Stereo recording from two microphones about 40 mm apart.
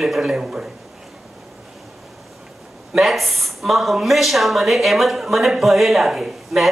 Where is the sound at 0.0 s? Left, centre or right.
Centre.